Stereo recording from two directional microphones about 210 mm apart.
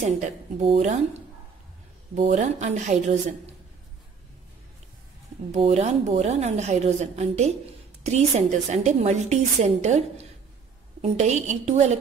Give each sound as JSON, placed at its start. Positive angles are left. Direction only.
{"t": 0.0, "sound": "a woman's voice", "side_deg": -30}
{"t": 2.1, "sound": "a woman's voice", "side_deg": -35}
{"t": 5.5, "sound": "a woman's voice", "side_deg": -30}